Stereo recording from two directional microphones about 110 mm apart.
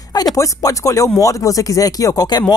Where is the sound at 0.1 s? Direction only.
35° left (ahead or behind).